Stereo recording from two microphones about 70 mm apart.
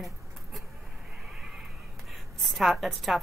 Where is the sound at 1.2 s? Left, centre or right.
Centre.